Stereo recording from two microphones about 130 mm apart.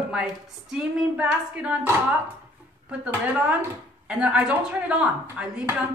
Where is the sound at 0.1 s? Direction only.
5° right (ahead or behind).